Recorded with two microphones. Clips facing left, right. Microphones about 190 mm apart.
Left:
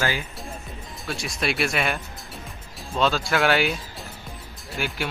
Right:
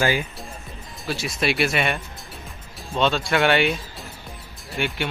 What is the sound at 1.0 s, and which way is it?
Speech, centre (ahead or behind).